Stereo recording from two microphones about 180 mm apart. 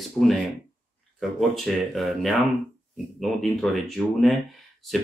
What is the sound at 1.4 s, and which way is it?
Speech, centre (ahead or behind).